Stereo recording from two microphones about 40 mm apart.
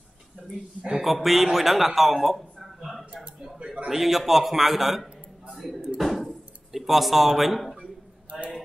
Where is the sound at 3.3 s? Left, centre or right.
Centre.